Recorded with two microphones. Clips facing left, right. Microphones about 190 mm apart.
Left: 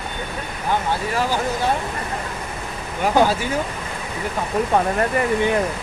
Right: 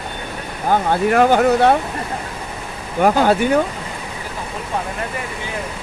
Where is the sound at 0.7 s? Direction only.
60° right (ahead or behind).